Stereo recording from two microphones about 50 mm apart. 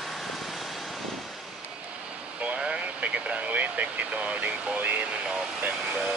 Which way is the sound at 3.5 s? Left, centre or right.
Right.